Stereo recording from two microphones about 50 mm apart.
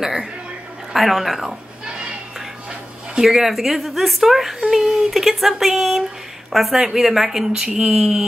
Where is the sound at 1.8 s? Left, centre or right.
Centre.